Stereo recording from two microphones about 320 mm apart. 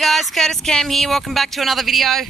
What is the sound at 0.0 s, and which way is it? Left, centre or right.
Speech, centre.